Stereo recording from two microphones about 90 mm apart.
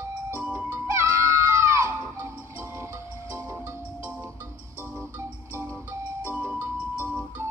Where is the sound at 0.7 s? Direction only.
30° right (ahead or behind).